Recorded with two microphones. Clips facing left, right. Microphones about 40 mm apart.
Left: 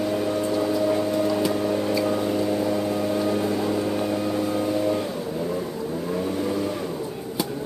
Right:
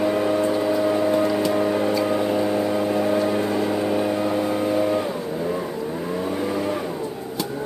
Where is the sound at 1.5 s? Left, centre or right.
Centre.